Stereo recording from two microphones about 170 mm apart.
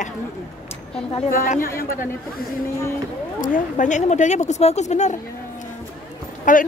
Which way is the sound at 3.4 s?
50° left (ahead or behind).